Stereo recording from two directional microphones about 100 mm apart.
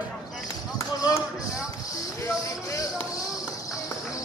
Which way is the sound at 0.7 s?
30° left (ahead or behind).